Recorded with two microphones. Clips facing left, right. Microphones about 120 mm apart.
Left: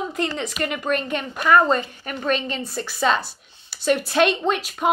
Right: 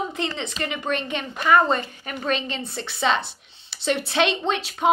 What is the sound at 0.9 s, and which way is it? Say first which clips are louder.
A woman's voice: left 3 dB; 35° left (ahead or behind).